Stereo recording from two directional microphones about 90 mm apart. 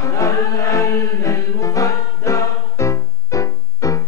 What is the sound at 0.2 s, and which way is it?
Music, 35° left (ahead or behind).